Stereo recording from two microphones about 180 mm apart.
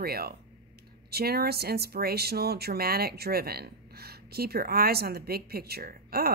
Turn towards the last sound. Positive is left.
turn(degrees=-60)  # may be behind; listen again after turning